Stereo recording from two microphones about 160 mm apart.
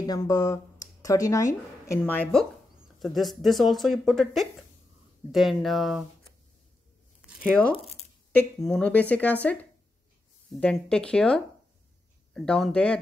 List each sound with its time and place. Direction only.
0.0 s speech: 25° left (ahead or behind)
3.0 s speech: centre (ahead or behind)
7.2 s a woman's voice: 10° left (ahead or behind)